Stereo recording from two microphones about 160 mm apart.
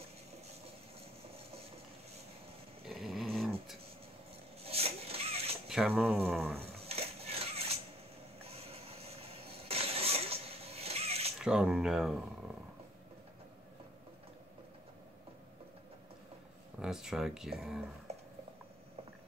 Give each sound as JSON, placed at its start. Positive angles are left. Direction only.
{"t": 2.9, "sound": "dog", "side_deg": 0}
{"t": 4.6, "sound": "a sound", "side_deg": -40}
{"t": 5.7, "sound": "speech", "side_deg": -5}
{"t": 6.6, "sound": "dishes", "side_deg": -40}
{"t": 8.5, "sound": "vehicle", "side_deg": -40}
{"t": 11.3, "sound": "speech", "side_deg": -5}
{"t": 16.8, "sound": "speech", "side_deg": -5}
{"t": 18.1, "sound": "a sound", "side_deg": -40}